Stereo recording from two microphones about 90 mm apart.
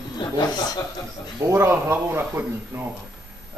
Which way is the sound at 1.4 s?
30° right (ahead or behind).